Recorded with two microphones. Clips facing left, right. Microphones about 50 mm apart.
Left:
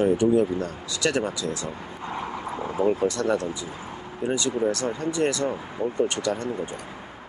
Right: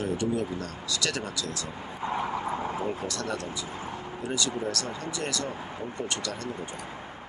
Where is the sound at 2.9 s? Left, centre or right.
Left.